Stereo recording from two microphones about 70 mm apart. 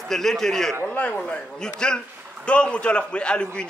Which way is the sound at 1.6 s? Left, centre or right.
Centre.